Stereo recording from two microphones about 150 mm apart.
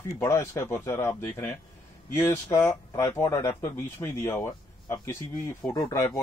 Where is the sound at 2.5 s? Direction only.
20° left (ahead or behind).